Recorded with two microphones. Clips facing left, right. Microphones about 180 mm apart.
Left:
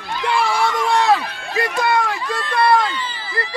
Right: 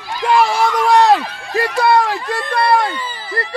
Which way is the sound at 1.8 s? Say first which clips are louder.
Right 6 dB; 35° right (ahead or behind).